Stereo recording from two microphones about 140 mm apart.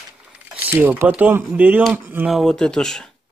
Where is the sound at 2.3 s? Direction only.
5° left (ahead or behind).